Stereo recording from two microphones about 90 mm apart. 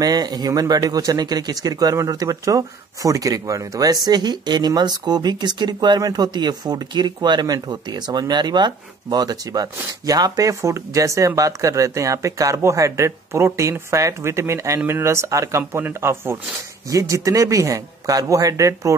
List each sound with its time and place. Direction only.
0.0 s a man's voice: 45° right (ahead or behind)